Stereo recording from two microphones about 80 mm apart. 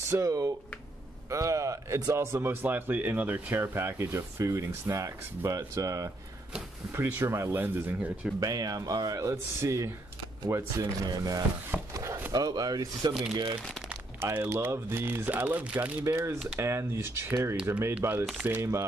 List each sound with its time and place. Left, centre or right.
0.1 s speech: right
2.3 s speech: right
6.9 s speech: right
8.4 s speech: right
10.8 s speech: right
11.9 s chopping: right
12.3 s speech: right
14.2 s speech: right
16.1 s speech: right
17.9 s speech: right